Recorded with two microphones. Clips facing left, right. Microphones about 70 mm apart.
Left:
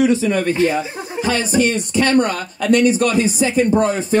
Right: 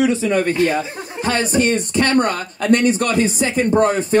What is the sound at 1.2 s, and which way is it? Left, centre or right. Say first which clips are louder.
Speech: even; right.